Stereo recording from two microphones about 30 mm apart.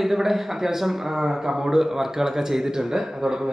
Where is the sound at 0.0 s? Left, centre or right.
Centre.